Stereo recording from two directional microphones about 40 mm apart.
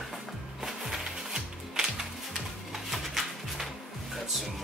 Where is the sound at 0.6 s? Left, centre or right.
Centre.